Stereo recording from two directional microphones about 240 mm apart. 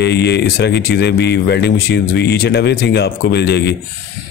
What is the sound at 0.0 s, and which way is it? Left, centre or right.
Speech, left.